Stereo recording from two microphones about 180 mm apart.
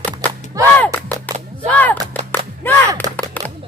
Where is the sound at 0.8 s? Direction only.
10° left (ahead or behind).